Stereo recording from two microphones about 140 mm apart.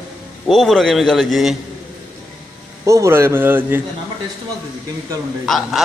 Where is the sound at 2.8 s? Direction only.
20° right (ahead or behind).